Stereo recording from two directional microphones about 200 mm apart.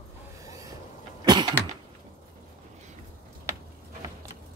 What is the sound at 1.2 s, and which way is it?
Cough, 20° right (ahead or behind).